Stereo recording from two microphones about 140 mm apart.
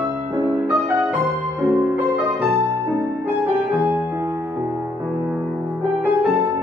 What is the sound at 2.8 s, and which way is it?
Music, 15° right (ahead or behind).